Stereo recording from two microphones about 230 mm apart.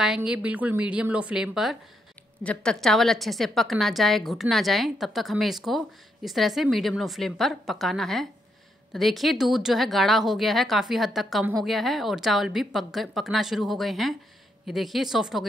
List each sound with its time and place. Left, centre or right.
0.0 s a woman's voice: centre